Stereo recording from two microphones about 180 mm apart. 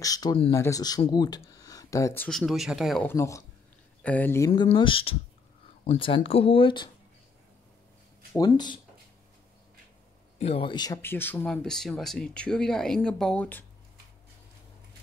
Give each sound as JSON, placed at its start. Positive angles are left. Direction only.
{"t": 0.0, "sound": "speech", "side_deg": 20}
{"t": 2.2, "sound": "speech", "side_deg": 0}
{"t": 3.0, "sound": "speech", "side_deg": 15}
{"t": 4.5, "sound": "speech", "side_deg": 30}
{"t": 8.4, "sound": "speech", "side_deg": 25}
{"t": 10.4, "sound": "speech", "side_deg": 30}